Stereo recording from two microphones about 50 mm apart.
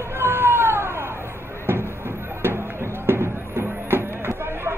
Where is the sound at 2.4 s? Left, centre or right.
Right.